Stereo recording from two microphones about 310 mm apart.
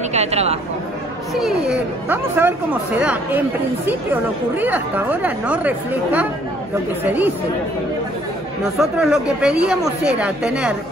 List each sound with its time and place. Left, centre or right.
0.1 s speech: right
1.3 s speech: centre
8.7 s speech: centre